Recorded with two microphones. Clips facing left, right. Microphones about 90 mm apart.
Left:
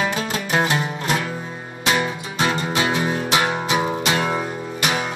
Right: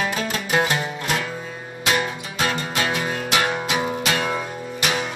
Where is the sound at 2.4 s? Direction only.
20° left (ahead or behind).